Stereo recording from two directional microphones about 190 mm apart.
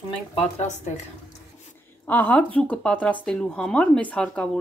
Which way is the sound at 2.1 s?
10° left (ahead or behind).